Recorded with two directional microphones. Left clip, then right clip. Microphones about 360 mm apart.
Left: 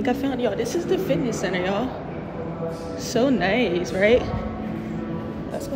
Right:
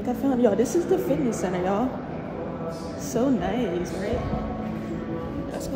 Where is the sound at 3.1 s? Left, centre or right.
Centre.